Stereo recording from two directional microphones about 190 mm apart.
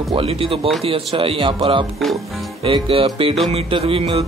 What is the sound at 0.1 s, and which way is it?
Speech, 30° right (ahead or behind).